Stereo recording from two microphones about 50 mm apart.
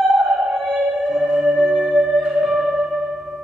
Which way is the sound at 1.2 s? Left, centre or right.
Centre.